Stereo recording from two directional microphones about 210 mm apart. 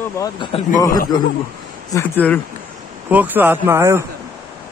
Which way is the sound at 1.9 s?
10° left (ahead or behind).